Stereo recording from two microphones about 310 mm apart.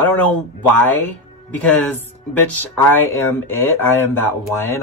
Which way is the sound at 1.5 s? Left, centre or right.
Centre.